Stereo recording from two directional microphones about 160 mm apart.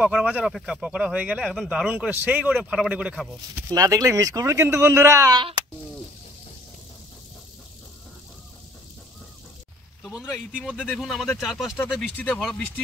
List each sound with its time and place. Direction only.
0.0 s speech: 5° right (ahead or behind)
3.7 s speech: 20° right (ahead or behind)
10.1 s speech: 5° right (ahead or behind)